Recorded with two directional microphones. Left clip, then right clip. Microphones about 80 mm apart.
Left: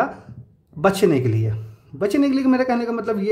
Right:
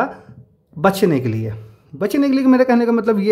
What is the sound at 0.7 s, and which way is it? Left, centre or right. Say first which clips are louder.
Speech: right 1 dB; centre.